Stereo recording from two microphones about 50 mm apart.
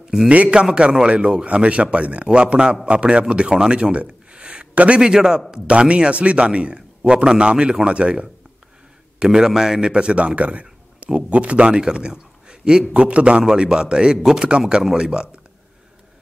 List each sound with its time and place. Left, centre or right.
0.3 s a man's voice: right
13.4 s a man's voice: centre